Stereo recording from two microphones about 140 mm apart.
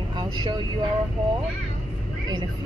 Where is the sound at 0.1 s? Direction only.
35° right (ahead or behind).